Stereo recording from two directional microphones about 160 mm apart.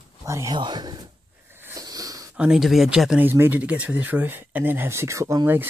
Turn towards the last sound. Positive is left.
turn(degrees=-15)  # may be behind; listen again after turning